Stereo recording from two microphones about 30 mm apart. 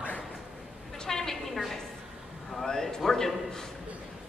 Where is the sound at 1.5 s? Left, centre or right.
Centre.